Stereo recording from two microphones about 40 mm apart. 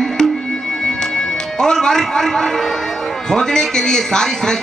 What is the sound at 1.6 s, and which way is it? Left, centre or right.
A man's voice, centre.